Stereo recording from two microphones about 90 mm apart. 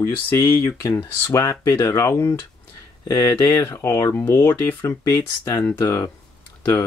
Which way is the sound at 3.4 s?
25° left (ahead or behind).